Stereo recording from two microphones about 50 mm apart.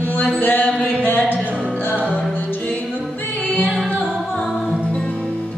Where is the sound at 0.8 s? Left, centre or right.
Left.